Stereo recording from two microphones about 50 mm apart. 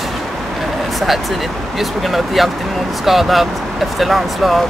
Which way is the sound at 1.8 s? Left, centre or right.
Centre.